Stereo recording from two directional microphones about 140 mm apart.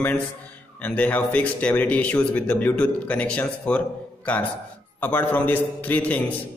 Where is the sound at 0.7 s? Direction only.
10° left (ahead or behind).